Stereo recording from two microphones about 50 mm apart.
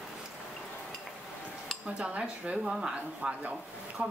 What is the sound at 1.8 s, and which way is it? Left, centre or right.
Cutlery, right.